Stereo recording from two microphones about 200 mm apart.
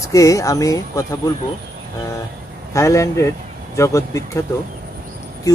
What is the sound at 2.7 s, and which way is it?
Speech, 15° left (ahead or behind).